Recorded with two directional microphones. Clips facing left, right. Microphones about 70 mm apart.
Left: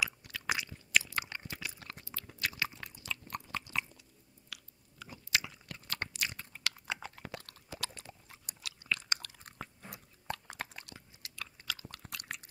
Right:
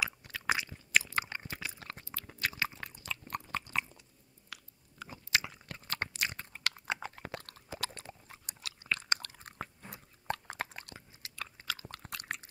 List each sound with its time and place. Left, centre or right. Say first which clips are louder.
0.0 s chewing: right 1 dB; right
4.5 s crunch: right 2 dB; right
7.8 s chewing: right 2 dB; right
12.0 s a sound: right 3 dB; right